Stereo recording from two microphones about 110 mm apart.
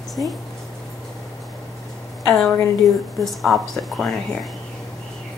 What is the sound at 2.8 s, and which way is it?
Speech, 30° left (ahead or behind).